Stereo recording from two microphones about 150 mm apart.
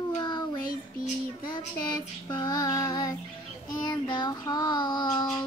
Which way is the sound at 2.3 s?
30° left (ahead or behind).